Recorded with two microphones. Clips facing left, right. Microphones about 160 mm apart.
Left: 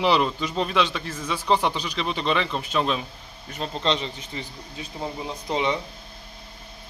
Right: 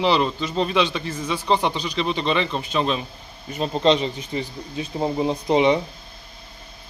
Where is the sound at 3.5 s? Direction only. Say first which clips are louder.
Right 7 dB; 15° right (ahead or behind).